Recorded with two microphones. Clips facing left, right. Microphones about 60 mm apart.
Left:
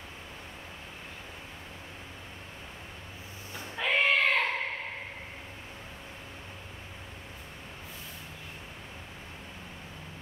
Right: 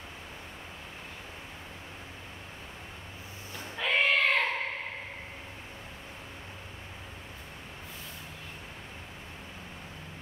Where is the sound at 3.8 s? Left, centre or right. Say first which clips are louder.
Even; centre.